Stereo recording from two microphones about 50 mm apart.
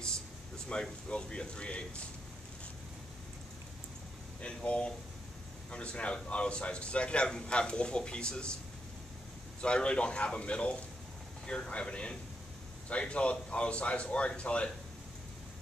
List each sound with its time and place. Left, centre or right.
0.7 s a man's voice: centre
4.4 s a man's voice: left
9.6 s a man's voice: left